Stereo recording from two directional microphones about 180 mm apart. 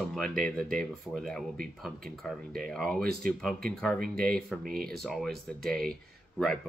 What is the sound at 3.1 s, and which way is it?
Speech, 50° right (ahead or behind).